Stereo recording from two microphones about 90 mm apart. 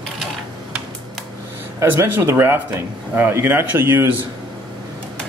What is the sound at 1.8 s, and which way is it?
A man's voice, 30° right (ahead or behind).